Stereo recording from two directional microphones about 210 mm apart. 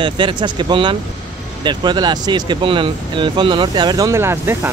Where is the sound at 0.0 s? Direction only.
25° right (ahead or behind).